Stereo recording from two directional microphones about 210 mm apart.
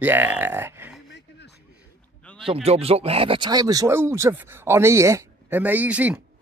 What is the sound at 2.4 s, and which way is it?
Speech, 25° right (ahead or behind).